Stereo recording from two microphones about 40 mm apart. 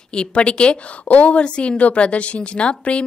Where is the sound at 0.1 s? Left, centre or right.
Left.